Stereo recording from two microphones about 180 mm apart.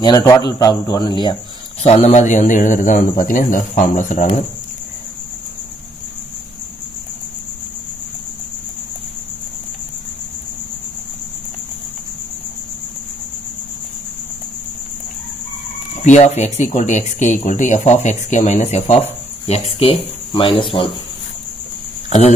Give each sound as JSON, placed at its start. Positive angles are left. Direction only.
{"t": 0.0, "sound": "speech", "side_deg": 20}
{"t": 1.8, "sound": "a man's voice", "side_deg": 35}
{"t": 15.9, "sound": "speech", "side_deg": 40}